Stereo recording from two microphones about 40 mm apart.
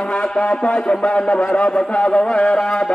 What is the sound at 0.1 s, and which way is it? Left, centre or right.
A man's voice, left.